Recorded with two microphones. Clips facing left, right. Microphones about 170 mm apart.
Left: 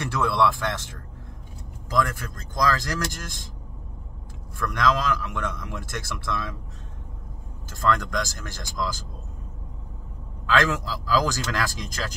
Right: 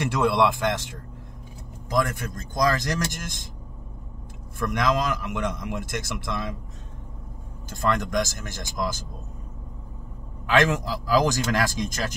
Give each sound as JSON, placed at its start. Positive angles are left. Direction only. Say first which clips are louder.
{"t": 0.0, "sound": "a man's voice", "louder": "right 2 dB", "side_deg": -20}
{"t": 1.9, "sound": "a man's voice", "louder": "right 1 dB", "side_deg": -20}
{"t": 4.6, "sound": "a man's voice", "louder": "even", "side_deg": -20}
{"t": 7.7, "sound": "a man's voice", "louder": "right 1 dB", "side_deg": -20}
{"t": 10.4, "sound": "a man's voice", "louder": "right 2 dB", "side_deg": -20}